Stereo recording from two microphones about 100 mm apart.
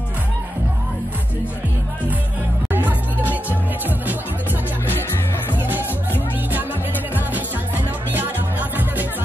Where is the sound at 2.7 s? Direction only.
15° right (ahead or behind).